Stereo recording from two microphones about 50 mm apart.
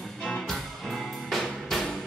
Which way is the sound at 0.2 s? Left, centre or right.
Centre.